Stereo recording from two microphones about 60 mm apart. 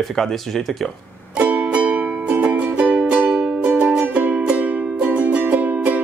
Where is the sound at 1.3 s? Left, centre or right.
Centre.